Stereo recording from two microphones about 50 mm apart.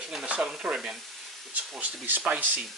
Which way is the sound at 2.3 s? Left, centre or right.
Right.